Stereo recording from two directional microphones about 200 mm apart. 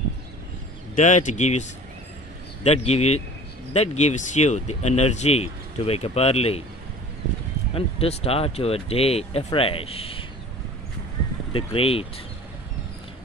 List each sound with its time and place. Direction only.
0.9 s speech: 40° left (ahead or behind)
7.7 s speech: 30° left (ahead or behind)
11.5 s speech: 30° left (ahead or behind)